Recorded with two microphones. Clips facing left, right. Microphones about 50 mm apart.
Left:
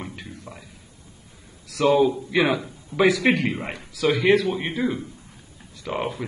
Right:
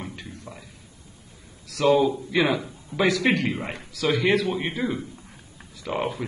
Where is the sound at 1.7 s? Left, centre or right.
Centre.